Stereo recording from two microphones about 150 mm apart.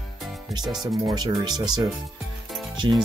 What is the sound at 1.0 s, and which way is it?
Speech, 25° right (ahead or behind).